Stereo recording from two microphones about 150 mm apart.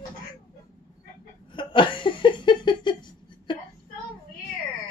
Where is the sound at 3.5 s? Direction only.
30° left (ahead or behind).